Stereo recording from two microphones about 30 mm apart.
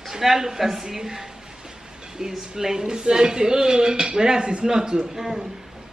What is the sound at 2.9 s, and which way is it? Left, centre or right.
Speech, right.